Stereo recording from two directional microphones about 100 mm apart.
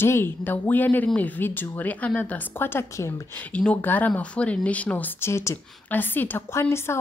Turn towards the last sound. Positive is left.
turn(degrees=25)  # may be behind; listen again after turning